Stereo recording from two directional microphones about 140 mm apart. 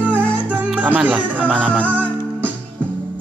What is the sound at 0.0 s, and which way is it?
Music, 10° right (ahead or behind).